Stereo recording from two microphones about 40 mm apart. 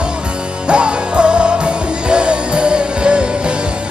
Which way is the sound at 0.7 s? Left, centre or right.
Right.